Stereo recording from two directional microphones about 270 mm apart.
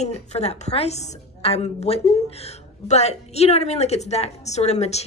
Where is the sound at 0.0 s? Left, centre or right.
Left.